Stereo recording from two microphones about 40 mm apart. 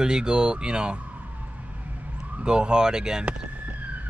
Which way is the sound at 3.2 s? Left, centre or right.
Right.